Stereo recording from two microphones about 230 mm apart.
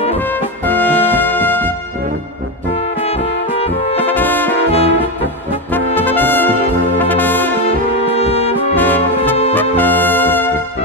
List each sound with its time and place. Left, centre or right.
0.2 s brass instrument: centre
2.7 s music: left
3.9 s brass instrument: centre
4.6 s brass instrument: left
5.7 s brass instrument: centre
7.6 s brass instrument: left
8.7 s music: centre